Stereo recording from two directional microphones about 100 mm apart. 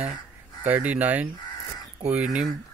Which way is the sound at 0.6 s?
15° right (ahead or behind).